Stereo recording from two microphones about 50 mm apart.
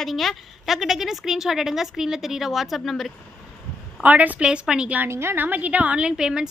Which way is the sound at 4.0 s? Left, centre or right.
Right.